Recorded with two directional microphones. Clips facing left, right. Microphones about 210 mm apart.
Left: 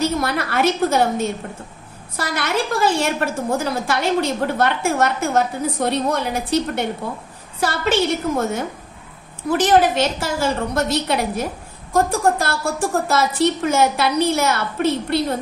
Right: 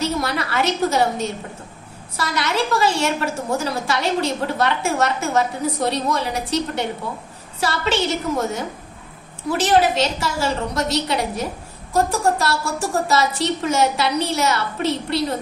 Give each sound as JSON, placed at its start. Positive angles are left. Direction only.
{"t": 0.0, "sound": "a woman's voice", "side_deg": 55}